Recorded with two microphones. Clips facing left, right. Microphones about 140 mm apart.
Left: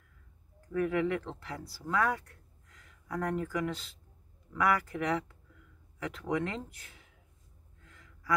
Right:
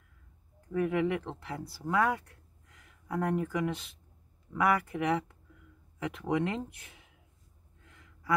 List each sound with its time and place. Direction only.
0.7 s speech: 20° right (ahead or behind)
7.8 s gasp: 20° right (ahead or behind)